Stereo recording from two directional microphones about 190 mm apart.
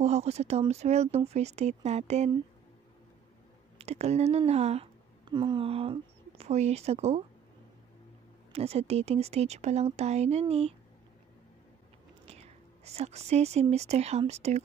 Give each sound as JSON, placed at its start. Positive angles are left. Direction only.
{"t": 0.0, "sound": "speech", "side_deg": -35}
{"t": 3.7, "sound": "speech", "side_deg": -35}
{"t": 8.5, "sound": "speech", "side_deg": -35}
{"t": 12.3, "sound": "speech", "side_deg": -35}